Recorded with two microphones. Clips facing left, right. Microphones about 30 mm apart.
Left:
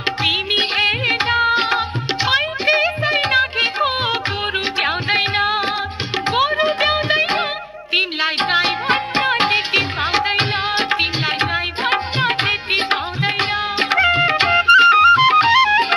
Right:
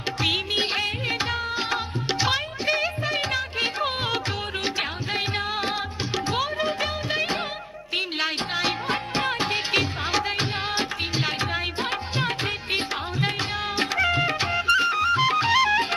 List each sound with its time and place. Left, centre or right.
0.2 s music of bollywood: left
2.8 s music: left
4.7 s music: left
8.4 s music: left
8.8 s music of bollywood: left
9.7 s music: left
10.3 s music: left
13.4 s music of bollywood: left
14.3 s music: left
15.5 s music: left